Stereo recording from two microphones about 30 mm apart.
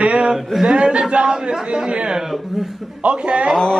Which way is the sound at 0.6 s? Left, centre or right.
Right.